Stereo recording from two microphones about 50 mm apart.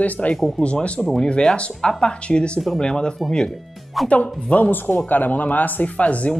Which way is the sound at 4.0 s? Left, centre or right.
Centre.